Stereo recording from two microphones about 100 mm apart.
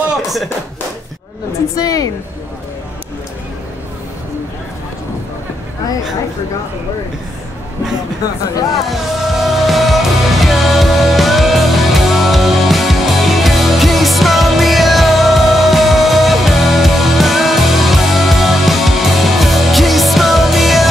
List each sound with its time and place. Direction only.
0.1 s speech: centre (ahead or behind)
1.8 s speech: 35° left (ahead or behind)
8.7 s music: centre (ahead or behind)